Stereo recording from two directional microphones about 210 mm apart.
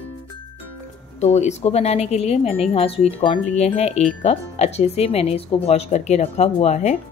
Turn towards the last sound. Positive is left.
turn(degrees=30)  # may be behind; listen again after turning